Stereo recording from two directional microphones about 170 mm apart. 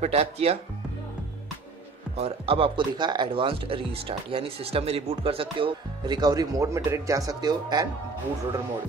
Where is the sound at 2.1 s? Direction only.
35° right (ahead or behind).